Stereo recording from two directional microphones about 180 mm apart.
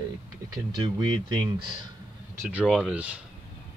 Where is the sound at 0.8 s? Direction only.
25° right (ahead or behind).